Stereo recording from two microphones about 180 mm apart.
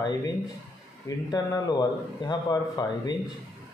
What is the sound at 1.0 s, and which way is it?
Speech, 20° left (ahead or behind).